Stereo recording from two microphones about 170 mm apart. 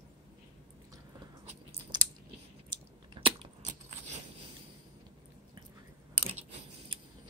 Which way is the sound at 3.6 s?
45° right (ahead or behind).